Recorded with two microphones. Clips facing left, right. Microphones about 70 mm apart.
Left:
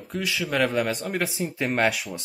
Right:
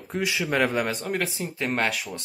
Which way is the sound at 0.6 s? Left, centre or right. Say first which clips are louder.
Left 1 dB; centre.